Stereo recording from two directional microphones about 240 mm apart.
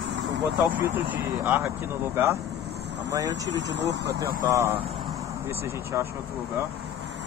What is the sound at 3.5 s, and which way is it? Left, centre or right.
Speech, right.